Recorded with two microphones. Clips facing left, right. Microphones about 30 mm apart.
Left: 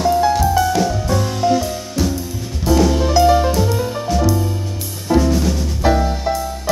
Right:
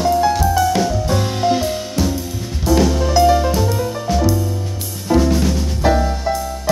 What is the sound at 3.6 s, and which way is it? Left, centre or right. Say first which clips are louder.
Music: left 1 dB; centre.